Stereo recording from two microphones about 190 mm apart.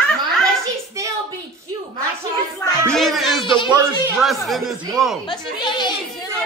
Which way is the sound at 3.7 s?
10° right (ahead or behind).